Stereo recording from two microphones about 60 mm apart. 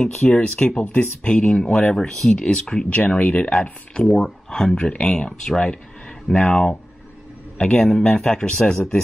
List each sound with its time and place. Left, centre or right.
0.0 s speech: centre
3.6 s speech: centre